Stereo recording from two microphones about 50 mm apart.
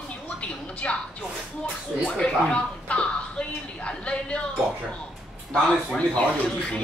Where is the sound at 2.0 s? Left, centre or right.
Centre.